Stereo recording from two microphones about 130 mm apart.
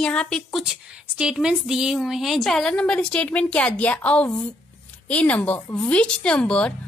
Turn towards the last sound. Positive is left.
turn(degrees=10)  # may be behind; listen again after turning